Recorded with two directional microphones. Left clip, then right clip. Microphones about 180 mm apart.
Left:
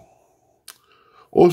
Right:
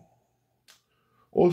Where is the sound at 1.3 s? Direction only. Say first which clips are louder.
Left 8 dB; 50° left (ahead or behind).